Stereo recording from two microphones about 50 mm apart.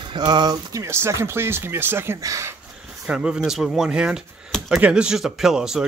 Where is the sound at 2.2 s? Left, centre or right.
Right.